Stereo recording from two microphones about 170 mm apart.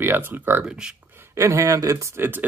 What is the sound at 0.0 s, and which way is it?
Speech, 10° right (ahead or behind).